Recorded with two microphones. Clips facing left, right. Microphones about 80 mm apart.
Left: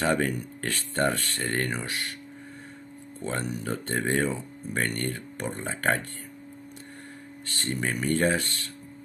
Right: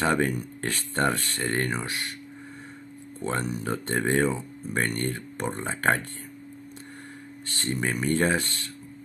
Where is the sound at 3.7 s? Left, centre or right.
Right.